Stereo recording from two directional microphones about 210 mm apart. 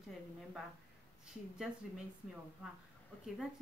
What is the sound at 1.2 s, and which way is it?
Speech, centre (ahead or behind).